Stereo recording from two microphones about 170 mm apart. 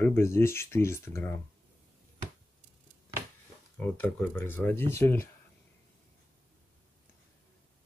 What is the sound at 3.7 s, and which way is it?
Speech, 10° left (ahead or behind).